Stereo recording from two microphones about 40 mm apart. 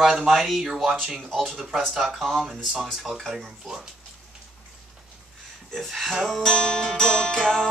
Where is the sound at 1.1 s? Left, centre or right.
Centre.